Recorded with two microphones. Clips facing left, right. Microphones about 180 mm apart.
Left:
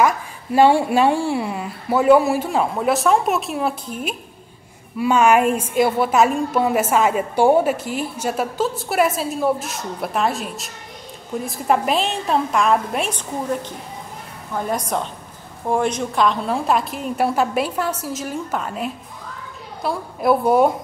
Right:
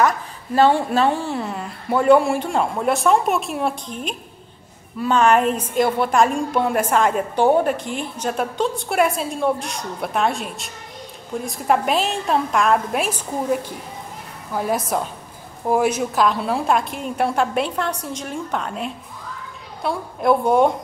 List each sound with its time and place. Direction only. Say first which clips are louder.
0.0 s a woman's voice: left 1 dB; 10° left (ahead or behind)